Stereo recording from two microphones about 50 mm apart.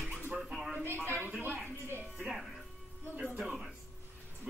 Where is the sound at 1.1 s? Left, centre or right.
Right.